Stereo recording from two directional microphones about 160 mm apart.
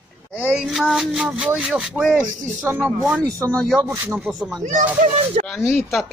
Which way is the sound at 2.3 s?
50° right (ahead or behind).